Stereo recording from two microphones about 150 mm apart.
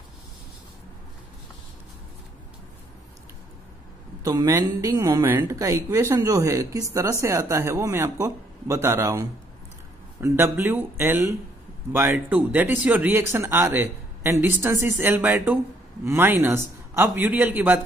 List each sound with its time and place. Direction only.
4.2 s a woman's voice: 25° right (ahead or behind)